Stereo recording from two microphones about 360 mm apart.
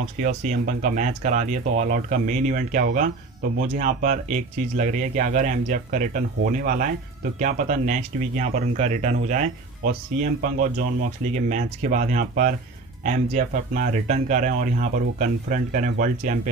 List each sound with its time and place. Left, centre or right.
0.2 s speech: right